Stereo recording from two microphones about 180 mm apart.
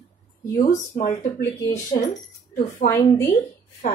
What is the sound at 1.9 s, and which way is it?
Speech, 40° left (ahead or behind).